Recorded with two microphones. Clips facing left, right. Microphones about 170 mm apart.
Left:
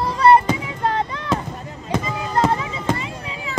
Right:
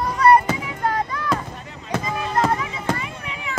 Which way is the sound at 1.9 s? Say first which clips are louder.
Left 1 dB; 25° left (ahead or behind).